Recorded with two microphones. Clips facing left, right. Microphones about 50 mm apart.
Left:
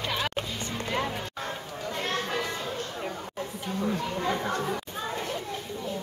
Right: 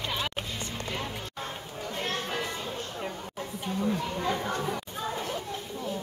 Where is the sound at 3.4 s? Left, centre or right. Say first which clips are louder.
Even; centre.